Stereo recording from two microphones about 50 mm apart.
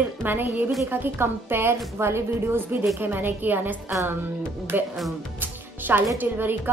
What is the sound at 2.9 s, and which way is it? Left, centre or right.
A woman's voice, right.